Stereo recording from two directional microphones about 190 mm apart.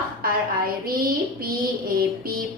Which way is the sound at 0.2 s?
50° right (ahead or behind).